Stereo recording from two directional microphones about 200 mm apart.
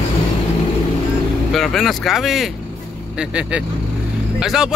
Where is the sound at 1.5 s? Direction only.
Centre (ahead or behind).